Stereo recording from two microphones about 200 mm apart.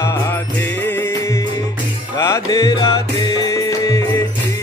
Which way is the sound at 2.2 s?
15° left (ahead or behind).